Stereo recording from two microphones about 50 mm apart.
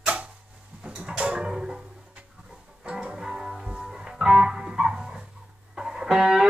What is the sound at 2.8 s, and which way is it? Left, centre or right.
Music, centre.